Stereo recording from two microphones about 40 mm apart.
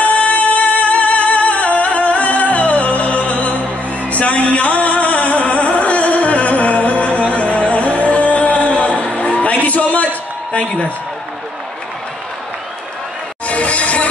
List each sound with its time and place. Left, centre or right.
0.3 s music: left
10.5 s a man's voice: left
13.5 s music: left